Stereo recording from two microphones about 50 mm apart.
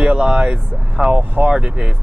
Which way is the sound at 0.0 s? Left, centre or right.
Right.